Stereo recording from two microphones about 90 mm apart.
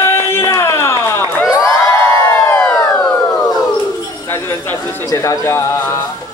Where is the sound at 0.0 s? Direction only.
30° left (ahead or behind).